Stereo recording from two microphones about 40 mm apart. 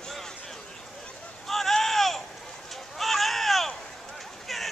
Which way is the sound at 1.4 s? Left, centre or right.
Centre.